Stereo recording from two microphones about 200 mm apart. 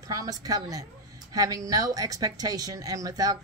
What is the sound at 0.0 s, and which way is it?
A woman's voice, 15° right (ahead or behind).